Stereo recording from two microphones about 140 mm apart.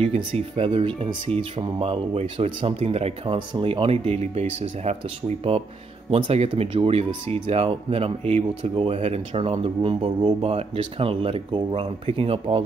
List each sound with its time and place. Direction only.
0.0 s speech: 45° right (ahead or behind)
3.3 s speech: 35° right (ahead or behind)
6.0 s speech: 40° right (ahead or behind)